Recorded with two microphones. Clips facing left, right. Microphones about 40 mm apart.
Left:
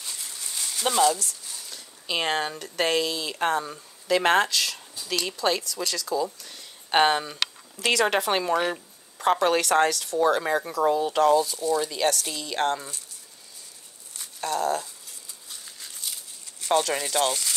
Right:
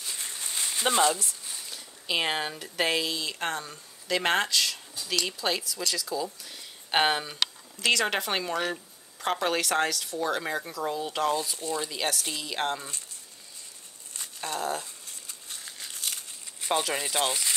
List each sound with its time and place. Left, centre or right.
0.1 s a sound: right
2.0 s speech: centre
6.4 s a sound: centre
7.8 s speech: centre
8.5 s speech: centre
9.2 s speech: centre
11.5 s speech: right
11.8 s speech: centre
14.5 s speech: centre
16.0 s crumpling: right
16.6 s speech: centre